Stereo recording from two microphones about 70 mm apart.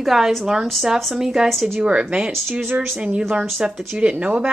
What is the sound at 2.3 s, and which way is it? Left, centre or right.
Speech, centre.